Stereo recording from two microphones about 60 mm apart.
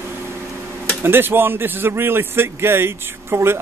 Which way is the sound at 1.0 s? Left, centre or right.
Right.